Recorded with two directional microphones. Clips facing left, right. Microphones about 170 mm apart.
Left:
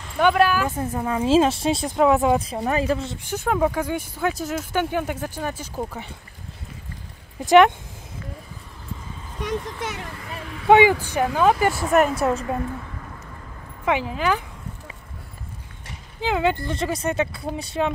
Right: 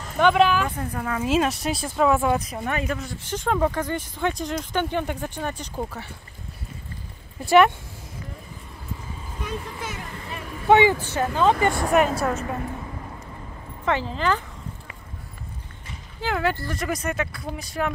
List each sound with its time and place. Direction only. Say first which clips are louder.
0.2 s speech: even; 5° left (ahead or behind)
0.7 s speech: left 3 dB; 25° left (ahead or behind)
3.3 s speech: left 1 dB; 5° left (ahead or behind)
7.3 s speech: left 3 dB; 15° left (ahead or behind)
9.4 s a sound: left 5 dB; 75° left (ahead or behind)
10.7 s speech: left 2 dB; 15° left (ahead or behind)
11.6 s speech: left 1 dB; centre (ahead or behind)
13.8 s speech: left 1 dB; 10° left (ahead or behind)
16.2 s speech: left 3 dB; 20° left (ahead or behind)